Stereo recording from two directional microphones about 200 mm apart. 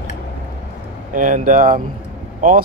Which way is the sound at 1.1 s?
40° right (ahead or behind).